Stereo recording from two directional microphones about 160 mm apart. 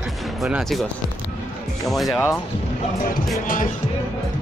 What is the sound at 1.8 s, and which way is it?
Speech, centre (ahead or behind).